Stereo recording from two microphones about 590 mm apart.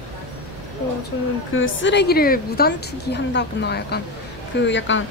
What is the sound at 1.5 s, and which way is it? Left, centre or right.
A woman's voice, centre.